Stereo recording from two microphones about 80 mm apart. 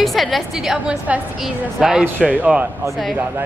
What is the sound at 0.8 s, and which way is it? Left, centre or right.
Speech, centre.